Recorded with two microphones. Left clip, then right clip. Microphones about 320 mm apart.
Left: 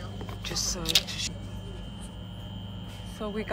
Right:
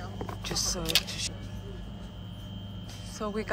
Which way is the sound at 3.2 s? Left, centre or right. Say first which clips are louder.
Right 1 dB; centre.